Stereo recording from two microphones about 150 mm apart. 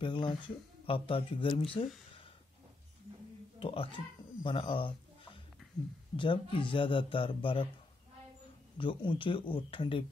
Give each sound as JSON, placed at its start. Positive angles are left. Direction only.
{"t": 0.0, "sound": "speech", "side_deg": 35}
{"t": 3.5, "sound": "speech", "side_deg": 35}
{"t": 4.5, "sound": "a sound", "side_deg": 35}
{"t": 6.1, "sound": "speech", "side_deg": 35}
{"t": 8.7, "sound": "speech", "side_deg": 35}